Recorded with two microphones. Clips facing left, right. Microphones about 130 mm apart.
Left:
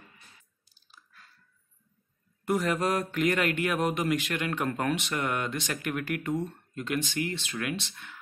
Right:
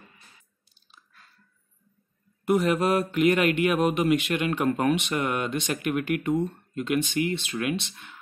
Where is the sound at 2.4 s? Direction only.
20° right (ahead or behind).